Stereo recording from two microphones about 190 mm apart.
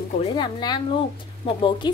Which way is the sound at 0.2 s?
25° left (ahead or behind).